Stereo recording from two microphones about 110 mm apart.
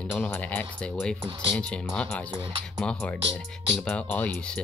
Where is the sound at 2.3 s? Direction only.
45° right (ahead or behind).